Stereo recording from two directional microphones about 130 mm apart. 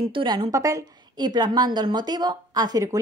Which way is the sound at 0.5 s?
25° right (ahead or behind).